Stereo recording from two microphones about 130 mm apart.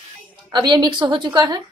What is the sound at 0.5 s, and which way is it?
A woman's voice, 35° right (ahead or behind).